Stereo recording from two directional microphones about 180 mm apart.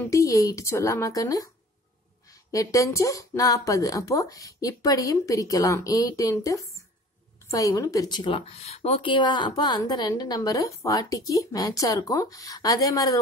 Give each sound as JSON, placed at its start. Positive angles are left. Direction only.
{"t": 0.0, "sound": "speech", "side_deg": 20}
{"t": 2.5, "sound": "a woman's voice", "side_deg": 20}